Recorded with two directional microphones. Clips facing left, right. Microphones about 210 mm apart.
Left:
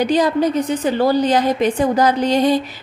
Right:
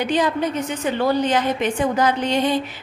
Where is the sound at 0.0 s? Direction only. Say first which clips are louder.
Left 5 dB; 40° left (ahead or behind).